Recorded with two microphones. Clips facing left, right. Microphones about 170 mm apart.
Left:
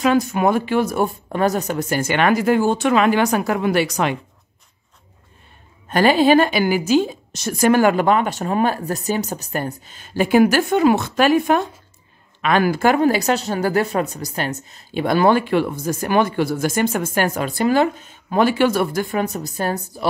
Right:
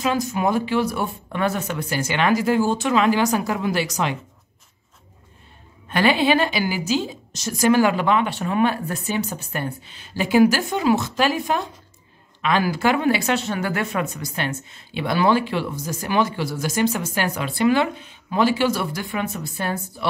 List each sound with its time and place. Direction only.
0.0 s speech: 60° left (ahead or behind)
5.9 s speech: 40° left (ahead or behind)